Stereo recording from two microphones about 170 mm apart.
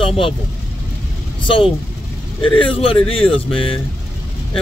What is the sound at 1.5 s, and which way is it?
Speech, 30° left (ahead or behind).